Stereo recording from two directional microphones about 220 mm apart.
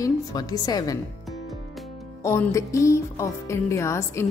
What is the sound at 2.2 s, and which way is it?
A woman's voice, 10° left (ahead or behind).